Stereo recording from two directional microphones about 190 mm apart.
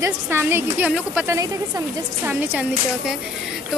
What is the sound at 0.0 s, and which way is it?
A woman's voice, 10° right (ahead or behind).